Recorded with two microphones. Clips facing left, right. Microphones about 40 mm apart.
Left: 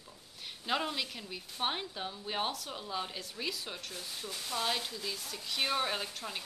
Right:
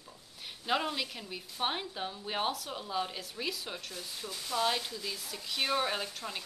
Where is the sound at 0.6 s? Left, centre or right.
Centre.